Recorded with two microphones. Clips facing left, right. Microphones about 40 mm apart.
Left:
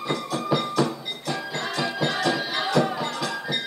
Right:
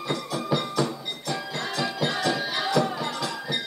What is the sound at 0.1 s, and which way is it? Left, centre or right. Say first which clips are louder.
Music: left 2 dB; centre.